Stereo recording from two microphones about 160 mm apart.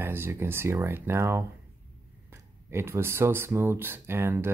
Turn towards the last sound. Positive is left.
turn(degrees=-15)  # may be behind; listen again after turning